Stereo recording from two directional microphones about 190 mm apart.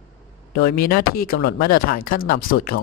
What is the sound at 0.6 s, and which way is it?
Speech, 50° left (ahead or behind).